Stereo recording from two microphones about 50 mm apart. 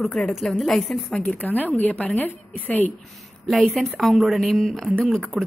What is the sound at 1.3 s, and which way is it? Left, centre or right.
A woman's voice, left.